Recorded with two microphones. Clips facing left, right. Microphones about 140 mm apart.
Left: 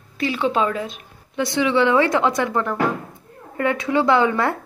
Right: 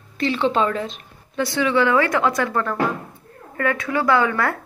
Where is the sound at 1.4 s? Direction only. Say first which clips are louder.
Left 1 dB; 20° left (ahead or behind).